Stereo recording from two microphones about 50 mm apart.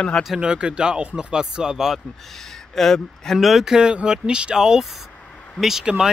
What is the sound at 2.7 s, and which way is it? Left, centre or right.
Speech, centre.